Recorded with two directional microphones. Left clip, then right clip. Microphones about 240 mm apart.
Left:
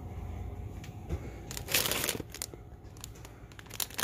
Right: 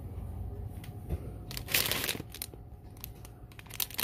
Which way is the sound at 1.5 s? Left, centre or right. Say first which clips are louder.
Even; centre.